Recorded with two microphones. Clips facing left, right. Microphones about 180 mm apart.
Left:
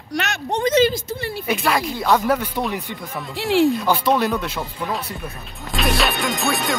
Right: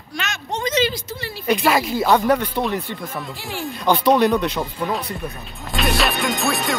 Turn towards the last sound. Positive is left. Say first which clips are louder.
# even
turn(degrees=0)  # may be behind; listen again after turning